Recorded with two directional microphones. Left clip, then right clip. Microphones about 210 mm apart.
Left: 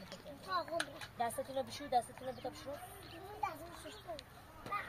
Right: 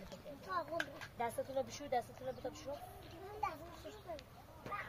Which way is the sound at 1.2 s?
35° right (ahead or behind).